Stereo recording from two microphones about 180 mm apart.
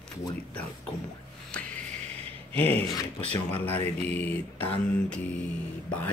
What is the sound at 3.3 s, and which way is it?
Speech, 10° left (ahead or behind).